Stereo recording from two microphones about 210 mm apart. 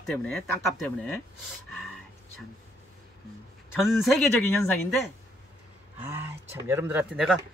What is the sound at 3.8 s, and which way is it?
Speech, centre (ahead or behind).